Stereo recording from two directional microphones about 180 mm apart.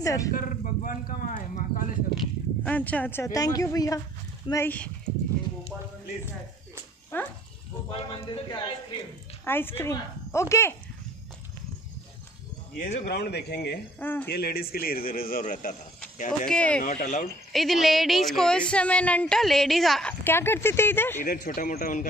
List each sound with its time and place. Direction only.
0.0 s speech: 15° left (ahead or behind)
0.3 s a sound: 50° left (ahead or behind)
2.1 s a sound: 10° left (ahead or behind)
4.5 s speech: 10° left (ahead or behind)
7.1 s speech: 10° left (ahead or behind)
7.9 s speech: 25° left (ahead or behind)
9.4 s speech: 10° left (ahead or behind)
12.7 s speech: 50° left (ahead or behind)
13.9 s speech: 10° left (ahead or behind)
14.2 s speech: 60° left (ahead or behind)
16.4 s a woman's voice: 5° left (ahead or behind)
16.8 s speech: 45° left (ahead or behind)
17.5 s a woman's voice: centre (ahead or behind)
21.2 s speech: 50° left (ahead or behind)